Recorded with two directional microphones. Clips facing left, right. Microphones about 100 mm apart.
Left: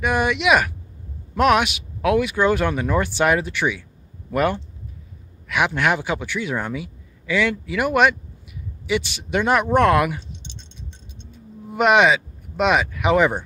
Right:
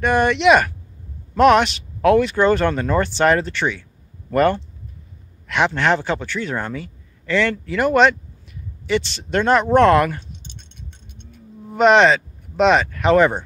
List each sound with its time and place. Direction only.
0.0 s a man's voice: 5° left (ahead or behind)
10.2 s keys jangling: 50° right (ahead or behind)
11.7 s speech: 10° left (ahead or behind)